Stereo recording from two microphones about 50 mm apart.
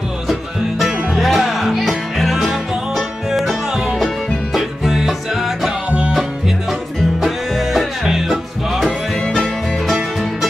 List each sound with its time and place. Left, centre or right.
0.3 s music: centre
5.9 s music: right
7.2 s music: centre